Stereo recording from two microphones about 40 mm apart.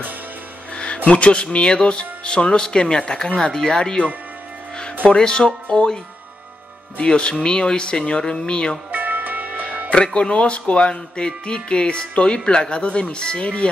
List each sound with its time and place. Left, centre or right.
1.1 s speech: left
5.1 s speech: centre
7.0 s speech: left
8.9 s music: right
9.9 s speech: left